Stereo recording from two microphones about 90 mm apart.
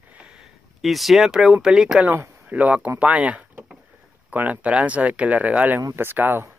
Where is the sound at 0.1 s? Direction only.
10° right (ahead or behind).